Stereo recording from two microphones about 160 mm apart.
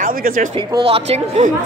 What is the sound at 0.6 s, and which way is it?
Speech, 30° right (ahead or behind).